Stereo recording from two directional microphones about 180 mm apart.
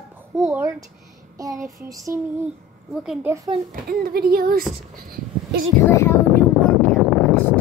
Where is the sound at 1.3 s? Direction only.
20° right (ahead or behind).